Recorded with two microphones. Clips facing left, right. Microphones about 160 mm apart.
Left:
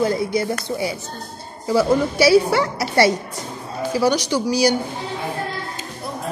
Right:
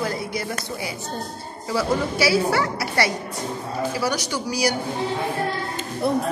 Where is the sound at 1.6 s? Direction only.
20° left (ahead or behind).